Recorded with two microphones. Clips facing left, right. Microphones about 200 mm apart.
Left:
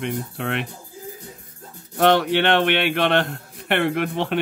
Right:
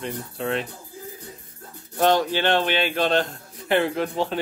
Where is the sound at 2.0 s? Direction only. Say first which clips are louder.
Left 3 dB; 65° left (ahead or behind).